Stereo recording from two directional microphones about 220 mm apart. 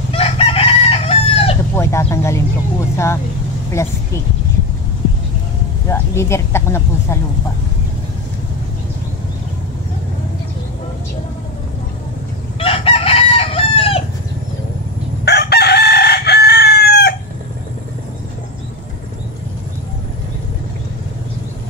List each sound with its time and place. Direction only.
0.1 s chicken: 25° left (ahead or behind)
1.8 s speech: 10° left (ahead or behind)
3.8 s speech: 15° left (ahead or behind)
5.9 s speech: 10° left (ahead or behind)
12.5 s chicken: 25° left (ahead or behind)
15.2 s chicken: 50° left (ahead or behind)